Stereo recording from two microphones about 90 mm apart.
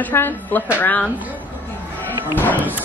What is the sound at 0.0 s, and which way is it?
A woman's voice, 25° left (ahead or behind).